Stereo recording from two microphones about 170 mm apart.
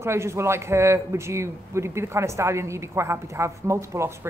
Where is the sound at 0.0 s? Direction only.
15° right (ahead or behind).